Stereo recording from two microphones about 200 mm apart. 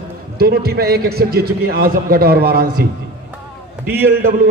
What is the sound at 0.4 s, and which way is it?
A man's voice, 50° right (ahead or behind).